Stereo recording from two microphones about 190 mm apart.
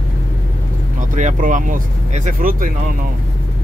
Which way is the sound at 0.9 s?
40° right (ahead or behind).